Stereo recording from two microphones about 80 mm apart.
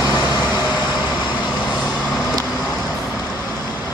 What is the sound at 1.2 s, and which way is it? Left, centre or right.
Vehicle, left.